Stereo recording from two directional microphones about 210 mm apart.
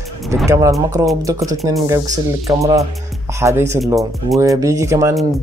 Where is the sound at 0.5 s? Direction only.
15° right (ahead or behind).